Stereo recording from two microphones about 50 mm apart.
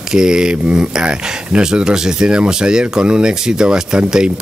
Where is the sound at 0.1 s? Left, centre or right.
Centre.